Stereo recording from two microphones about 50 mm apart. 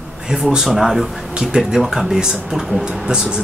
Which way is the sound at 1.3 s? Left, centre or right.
Centre.